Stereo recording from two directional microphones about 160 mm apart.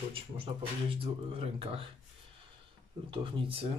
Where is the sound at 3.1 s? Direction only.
30° right (ahead or behind).